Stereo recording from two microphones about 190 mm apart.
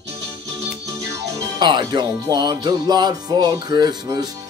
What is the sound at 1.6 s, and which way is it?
Music, 25° right (ahead or behind).